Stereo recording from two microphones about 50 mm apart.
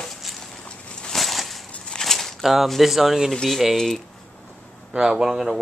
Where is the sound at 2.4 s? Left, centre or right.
Centre.